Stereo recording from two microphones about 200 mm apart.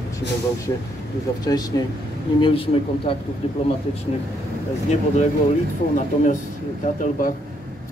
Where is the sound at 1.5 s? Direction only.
20° left (ahead or behind).